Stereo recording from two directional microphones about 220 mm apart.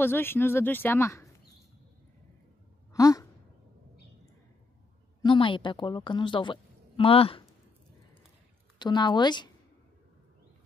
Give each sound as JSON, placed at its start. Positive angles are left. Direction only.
{"t": 0.0, "sound": "speech", "side_deg": 10}
{"t": 2.9, "sound": "sigh", "side_deg": 15}
{"t": 5.2, "sound": "a woman's voice", "side_deg": 20}
{"t": 8.7, "sound": "speech", "side_deg": 20}